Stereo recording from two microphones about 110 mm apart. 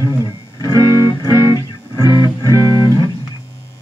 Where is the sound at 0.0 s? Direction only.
35° left (ahead or behind).